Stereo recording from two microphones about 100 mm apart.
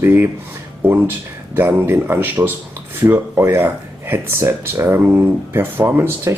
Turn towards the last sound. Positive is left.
turn(degrees=-25)  # may be behind; listen again after turning